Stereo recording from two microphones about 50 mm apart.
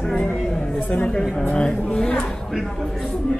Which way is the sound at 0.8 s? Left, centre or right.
Centre.